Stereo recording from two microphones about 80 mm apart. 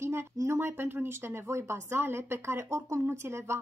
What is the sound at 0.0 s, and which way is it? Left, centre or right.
A woman's voice, right.